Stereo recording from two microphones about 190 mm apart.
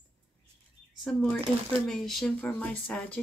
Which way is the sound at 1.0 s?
5° left (ahead or behind).